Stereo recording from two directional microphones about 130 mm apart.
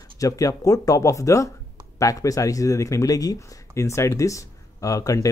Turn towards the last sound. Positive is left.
turn(degrees=25)  # may be behind; listen again after turning